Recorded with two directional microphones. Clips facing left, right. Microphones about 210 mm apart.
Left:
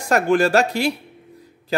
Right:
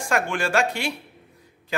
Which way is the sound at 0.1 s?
40° left (ahead or behind).